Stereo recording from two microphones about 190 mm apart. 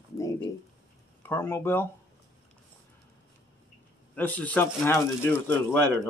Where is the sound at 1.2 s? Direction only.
10° left (ahead or behind).